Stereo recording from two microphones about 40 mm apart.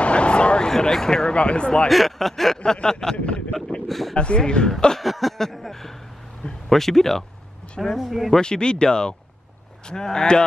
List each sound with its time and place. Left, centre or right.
0.0 s a sound: left
0.7 s speech: centre
1.3 s speech: left
1.9 s speech: centre
2.6 s speech: centre
3.8 s speech: centre
4.1 s speech: left
5.0 s speech: centre
5.4 s a sound: centre
6.7 s speech: centre
8.4 s speech: left